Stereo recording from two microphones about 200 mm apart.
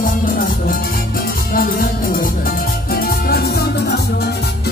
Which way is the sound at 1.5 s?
45° left (ahead or behind).